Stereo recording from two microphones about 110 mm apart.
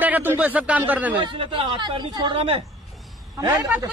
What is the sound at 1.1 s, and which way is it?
Speech, 45° right (ahead or behind).